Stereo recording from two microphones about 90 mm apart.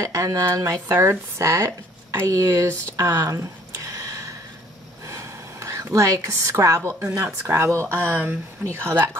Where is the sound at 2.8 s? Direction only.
40° right (ahead or behind).